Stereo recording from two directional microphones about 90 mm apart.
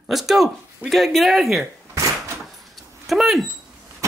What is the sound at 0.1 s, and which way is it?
Speech, centre (ahead or behind).